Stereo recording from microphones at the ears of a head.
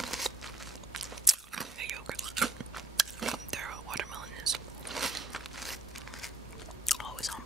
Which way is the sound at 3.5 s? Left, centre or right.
Right.